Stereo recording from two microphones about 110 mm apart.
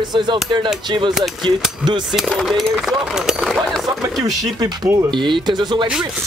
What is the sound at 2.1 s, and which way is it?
Speech, centre (ahead or behind).